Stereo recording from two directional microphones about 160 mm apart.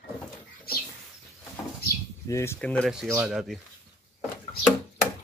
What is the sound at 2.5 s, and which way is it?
Speech, 5° left (ahead or behind).